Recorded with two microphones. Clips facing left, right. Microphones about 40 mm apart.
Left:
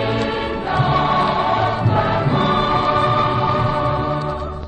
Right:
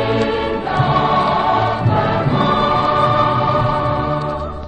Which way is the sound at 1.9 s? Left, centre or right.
Right.